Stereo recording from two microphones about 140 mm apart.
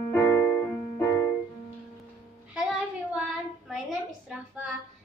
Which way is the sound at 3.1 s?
5° right (ahead or behind).